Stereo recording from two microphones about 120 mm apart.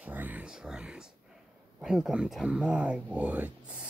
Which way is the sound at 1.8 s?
5° right (ahead or behind).